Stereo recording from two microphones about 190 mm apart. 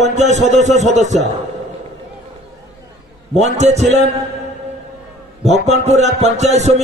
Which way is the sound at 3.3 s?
35° right (ahead or behind).